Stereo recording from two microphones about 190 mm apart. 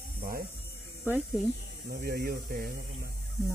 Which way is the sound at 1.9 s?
50° right (ahead or behind).